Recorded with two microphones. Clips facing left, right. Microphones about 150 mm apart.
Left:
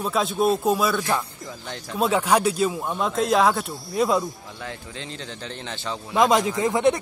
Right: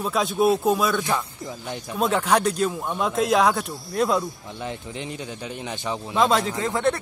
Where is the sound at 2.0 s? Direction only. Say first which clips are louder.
Left 1 dB; 10° left (ahead or behind).